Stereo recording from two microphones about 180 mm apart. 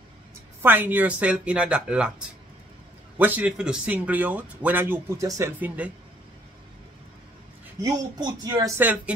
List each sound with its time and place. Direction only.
0.6 s speech: 10° right (ahead or behind)
7.8 s speech: 25° right (ahead or behind)